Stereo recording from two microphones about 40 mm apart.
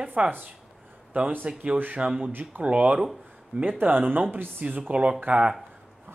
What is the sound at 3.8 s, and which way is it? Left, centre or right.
Speech, right.